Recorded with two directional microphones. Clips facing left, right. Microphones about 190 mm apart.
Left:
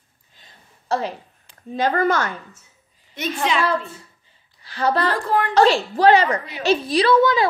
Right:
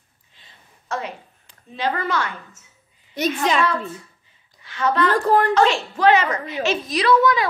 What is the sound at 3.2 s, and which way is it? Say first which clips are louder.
Speech: right 5 dB; 35° right (ahead or behind).